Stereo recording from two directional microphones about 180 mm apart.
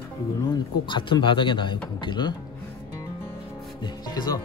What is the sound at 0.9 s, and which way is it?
Speech, 25° left (ahead or behind).